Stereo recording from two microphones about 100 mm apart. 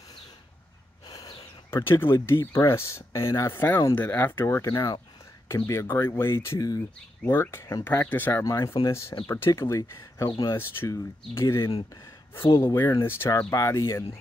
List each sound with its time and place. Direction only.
1.0 s snort: 40° left (ahead or behind)
1.7 s speech: 25° left (ahead or behind)
7.2 s speech: 25° left (ahead or behind)